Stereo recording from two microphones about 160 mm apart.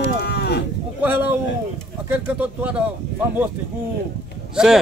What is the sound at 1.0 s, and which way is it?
Speech, 10° right (ahead or behind).